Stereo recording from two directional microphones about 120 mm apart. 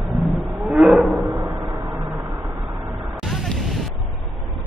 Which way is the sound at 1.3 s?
40° right (ahead or behind).